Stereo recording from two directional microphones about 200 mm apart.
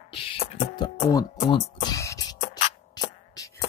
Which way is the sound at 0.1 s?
25° left (ahead or behind).